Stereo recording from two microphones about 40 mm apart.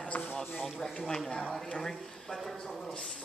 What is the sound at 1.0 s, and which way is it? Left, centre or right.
Speech, centre.